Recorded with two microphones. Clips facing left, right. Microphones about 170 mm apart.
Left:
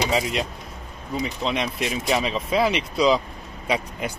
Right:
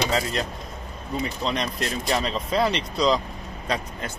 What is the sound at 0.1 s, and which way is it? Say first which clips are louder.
Speech: left 2 dB; 15° left (ahead or behind).